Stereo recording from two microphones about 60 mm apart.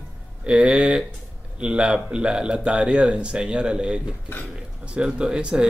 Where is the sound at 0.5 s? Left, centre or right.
Centre.